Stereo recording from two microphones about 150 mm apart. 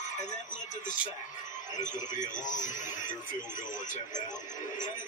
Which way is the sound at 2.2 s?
55° left (ahead or behind).